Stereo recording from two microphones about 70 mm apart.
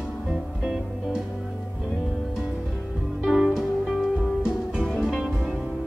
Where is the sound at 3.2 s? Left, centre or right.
Centre.